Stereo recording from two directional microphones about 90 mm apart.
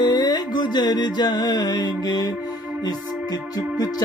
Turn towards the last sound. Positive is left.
turn(degrees=45)  # may be behind; listen again after turning